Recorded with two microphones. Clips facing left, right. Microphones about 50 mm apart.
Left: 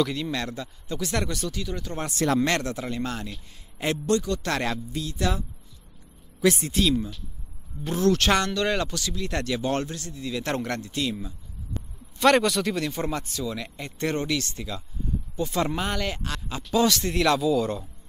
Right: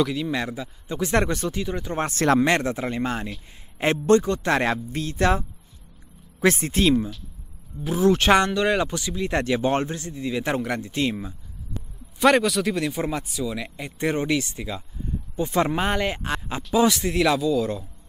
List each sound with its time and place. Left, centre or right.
0.0 s a man's voice: centre
0.9 s speech: right
2.0 s a man's voice: right
2.4 s a man's voice: right
4.9 s a man's voice: right
6.4 s a man's voice: right
8.0 s speech: centre
10.5 s a man's voice: centre
10.8 s speech: right
12.2 s a man's voice: centre; by 16.6 s right
16.7 s a man's voice: centre
17.1 s speech: centre